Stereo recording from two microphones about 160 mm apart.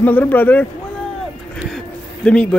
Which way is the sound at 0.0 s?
10° left (ahead or behind).